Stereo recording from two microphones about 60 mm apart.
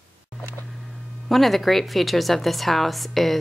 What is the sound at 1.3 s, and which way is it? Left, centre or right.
A woman's voice, centre.